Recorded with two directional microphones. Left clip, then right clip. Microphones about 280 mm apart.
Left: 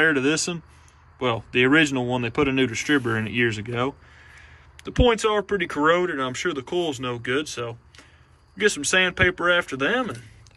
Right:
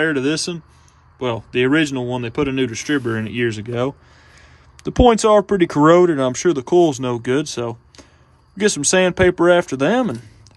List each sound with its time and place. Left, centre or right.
0.0 s speech: centre